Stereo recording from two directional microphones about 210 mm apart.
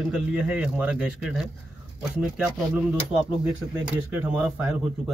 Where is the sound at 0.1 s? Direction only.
5° right (ahead or behind).